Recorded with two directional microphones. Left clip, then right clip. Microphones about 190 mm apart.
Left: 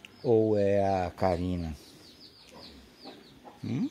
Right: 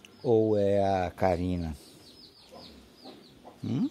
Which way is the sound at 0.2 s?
10° right (ahead or behind).